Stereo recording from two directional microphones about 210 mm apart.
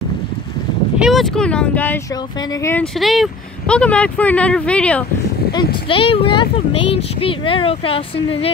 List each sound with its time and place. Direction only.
0.9 s speech: centre (ahead or behind)
5.9 s speech: 25° left (ahead or behind)